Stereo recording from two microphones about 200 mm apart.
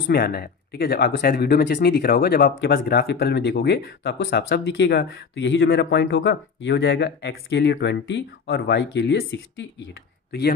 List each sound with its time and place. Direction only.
0.0 s speech: 50° left (ahead or behind); by 9.8 s 65° left (ahead or behind)